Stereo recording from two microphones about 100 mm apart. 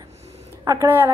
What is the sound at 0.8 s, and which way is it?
Speech, 20° right (ahead or behind).